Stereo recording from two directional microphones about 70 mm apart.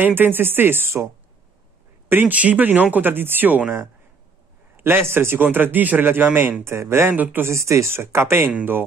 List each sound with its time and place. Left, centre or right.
0.0 s a man's voice: right
7.5 s a man's voice: right